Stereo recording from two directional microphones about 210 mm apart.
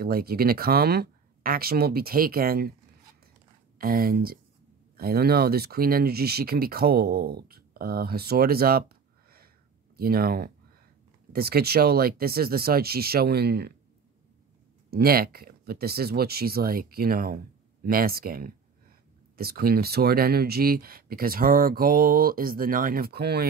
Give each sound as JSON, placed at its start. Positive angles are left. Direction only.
{"t": 0.0, "sound": "speech", "side_deg": -45}
{"t": 3.7, "sound": "speech", "side_deg": -45}
{"t": 14.9, "sound": "speech", "side_deg": -45}